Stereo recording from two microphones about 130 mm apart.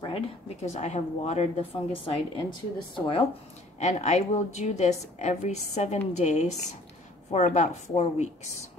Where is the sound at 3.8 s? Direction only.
60° left (ahead or behind).